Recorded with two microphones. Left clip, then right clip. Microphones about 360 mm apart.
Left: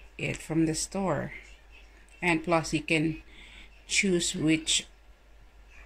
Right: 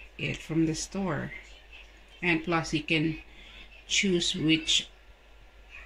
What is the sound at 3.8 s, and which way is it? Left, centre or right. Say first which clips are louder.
Speech: even; centre.